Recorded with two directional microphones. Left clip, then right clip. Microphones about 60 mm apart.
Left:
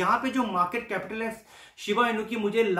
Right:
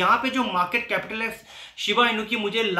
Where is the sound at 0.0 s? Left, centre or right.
Left.